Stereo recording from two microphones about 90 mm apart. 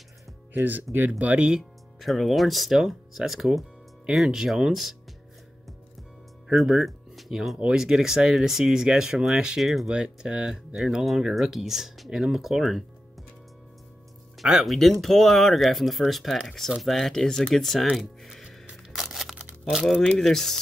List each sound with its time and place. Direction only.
0.5 s speech: 20° right (ahead or behind); by 4.9 s 5° right (ahead or behind)
6.4 s speech: centre (ahead or behind)
14.4 s speech: 5° right (ahead or behind)
17.9 s music: centre (ahead or behind)
19.6 s speech: centre (ahead or behind)